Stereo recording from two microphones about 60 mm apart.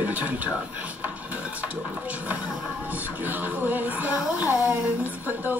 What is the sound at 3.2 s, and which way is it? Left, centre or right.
Speech, right.